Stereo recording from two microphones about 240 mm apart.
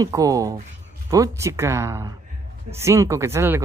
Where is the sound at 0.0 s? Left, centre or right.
Centre.